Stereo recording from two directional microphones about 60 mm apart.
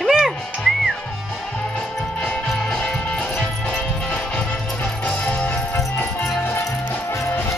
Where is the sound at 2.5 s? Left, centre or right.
Centre; by 5.6 s left.